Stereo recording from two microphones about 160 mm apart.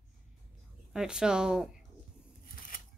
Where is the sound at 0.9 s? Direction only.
5° right (ahead or behind).